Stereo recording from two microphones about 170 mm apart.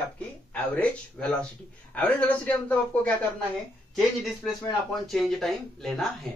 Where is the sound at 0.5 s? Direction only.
5° left (ahead or behind).